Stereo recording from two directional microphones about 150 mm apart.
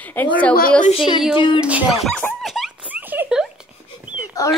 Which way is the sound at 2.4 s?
Centre (ahead or behind).